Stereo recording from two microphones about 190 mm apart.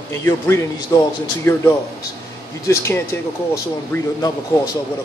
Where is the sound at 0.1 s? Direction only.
15° left (ahead or behind).